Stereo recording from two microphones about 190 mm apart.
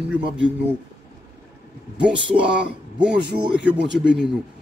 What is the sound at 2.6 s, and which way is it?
Speech, 5° right (ahead or behind).